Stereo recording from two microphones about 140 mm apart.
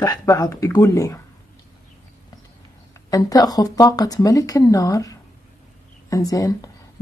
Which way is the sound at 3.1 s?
25° left (ahead or behind).